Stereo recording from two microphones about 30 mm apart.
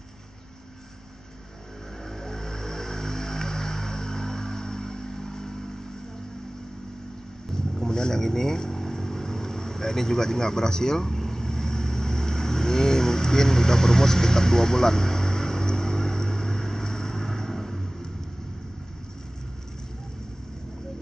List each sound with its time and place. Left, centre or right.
2.0 s vehicle: centre
7.5 s vehicle: left